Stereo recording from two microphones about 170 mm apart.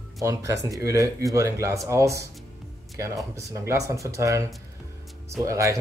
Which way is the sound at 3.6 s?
20° right (ahead or behind).